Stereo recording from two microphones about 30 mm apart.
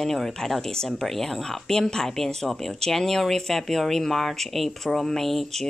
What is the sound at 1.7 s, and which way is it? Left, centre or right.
Speech, centre.